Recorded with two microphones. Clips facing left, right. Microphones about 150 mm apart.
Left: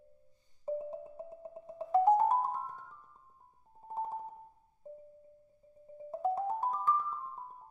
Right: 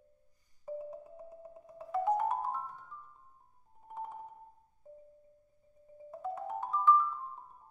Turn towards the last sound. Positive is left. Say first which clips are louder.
# even
turn(degrees=40)  # may be behind; listen again after turning